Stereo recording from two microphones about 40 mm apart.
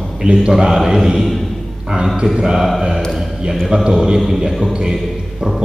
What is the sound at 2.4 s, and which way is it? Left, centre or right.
A man's voice, centre.